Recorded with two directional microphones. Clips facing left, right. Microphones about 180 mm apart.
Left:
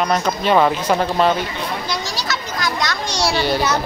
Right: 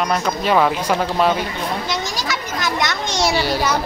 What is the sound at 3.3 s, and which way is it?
Speech, 10° right (ahead or behind).